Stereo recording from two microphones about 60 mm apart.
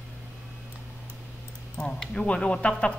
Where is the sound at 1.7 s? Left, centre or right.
Centre.